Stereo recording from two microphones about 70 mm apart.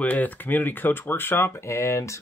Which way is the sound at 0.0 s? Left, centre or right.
Left.